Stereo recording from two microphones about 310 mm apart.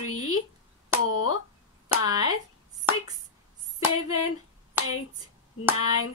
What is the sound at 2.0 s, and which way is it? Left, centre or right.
Speech, centre.